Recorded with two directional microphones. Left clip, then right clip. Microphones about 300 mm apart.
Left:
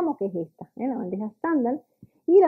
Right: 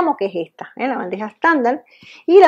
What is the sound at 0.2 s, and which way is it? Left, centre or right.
Speech, right.